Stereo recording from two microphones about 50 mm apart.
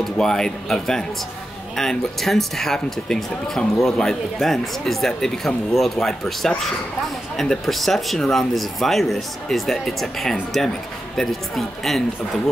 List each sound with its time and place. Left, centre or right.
0.0 s speech: centre